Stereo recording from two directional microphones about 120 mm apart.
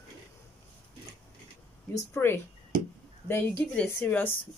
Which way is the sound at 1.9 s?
20° left (ahead or behind).